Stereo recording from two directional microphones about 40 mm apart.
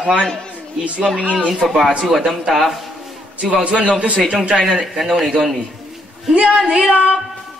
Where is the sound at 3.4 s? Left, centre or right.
Right.